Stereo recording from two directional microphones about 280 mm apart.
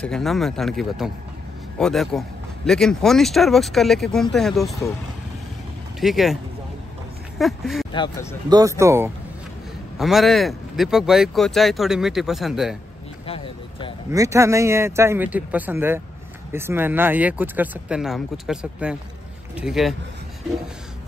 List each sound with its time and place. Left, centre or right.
0.0 s speech: centre
5.9 s speech: centre
7.3 s speech: centre
7.9 s speech: centre
8.5 s speech: centre
13.3 s vehicle: centre
14.1 s speech: centre